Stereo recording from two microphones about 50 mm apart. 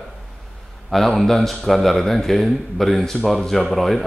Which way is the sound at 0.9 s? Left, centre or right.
Centre.